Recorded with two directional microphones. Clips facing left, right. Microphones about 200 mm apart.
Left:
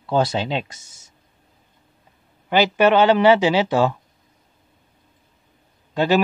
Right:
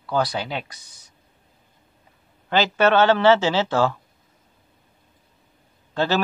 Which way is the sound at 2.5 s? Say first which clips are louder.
Left 2 dB; 15° left (ahead or behind).